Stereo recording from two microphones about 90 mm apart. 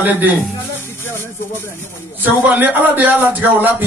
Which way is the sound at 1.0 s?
30° left (ahead or behind).